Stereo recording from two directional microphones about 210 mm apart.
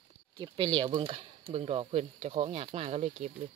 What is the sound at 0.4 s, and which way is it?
Speech, 20° right (ahead or behind).